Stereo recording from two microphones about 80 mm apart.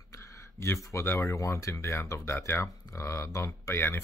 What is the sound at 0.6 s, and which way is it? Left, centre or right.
Speech, left.